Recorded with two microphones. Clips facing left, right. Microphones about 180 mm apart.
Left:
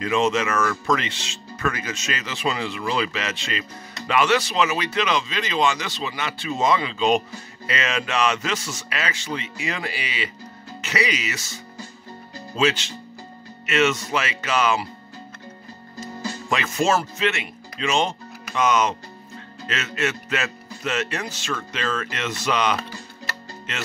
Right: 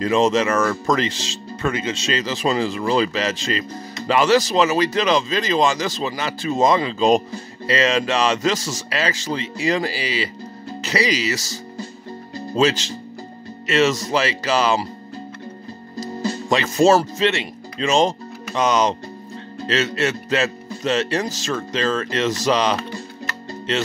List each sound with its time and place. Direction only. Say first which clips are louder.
0.0 s speech: right 4 dB; 35° right (ahead or behind)
16.0 s speech: right 7 dB; 35° right (ahead or behind)